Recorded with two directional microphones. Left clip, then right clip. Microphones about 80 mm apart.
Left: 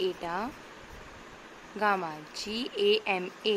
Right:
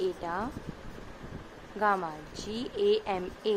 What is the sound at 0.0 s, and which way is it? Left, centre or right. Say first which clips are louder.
Speech: even; left.